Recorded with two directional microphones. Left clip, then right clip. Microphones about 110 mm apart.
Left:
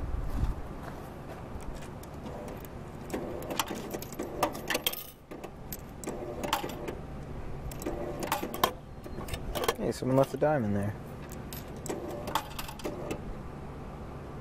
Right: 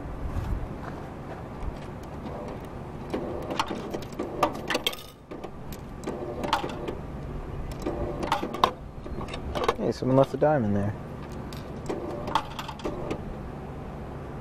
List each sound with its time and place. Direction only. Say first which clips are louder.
3.1 s sewing machine: right 4 dB; 15° left (ahead or behind)
6.0 s sewing machine: right 4 dB; 10° left (ahead or behind)
9.5 s vehicle: right 4 dB; 20° left (ahead or behind)
9.8 s speech: right 5 dB; 5° left (ahead or behind)
11.9 s printer: right 5 dB; 15° left (ahead or behind)